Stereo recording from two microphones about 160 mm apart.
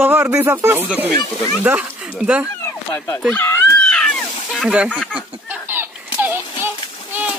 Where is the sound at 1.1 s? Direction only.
25° left (ahead or behind).